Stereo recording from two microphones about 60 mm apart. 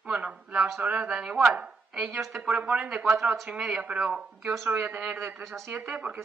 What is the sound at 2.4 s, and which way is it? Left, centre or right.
Speech, right.